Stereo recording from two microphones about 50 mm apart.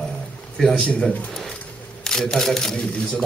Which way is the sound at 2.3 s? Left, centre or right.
Centre.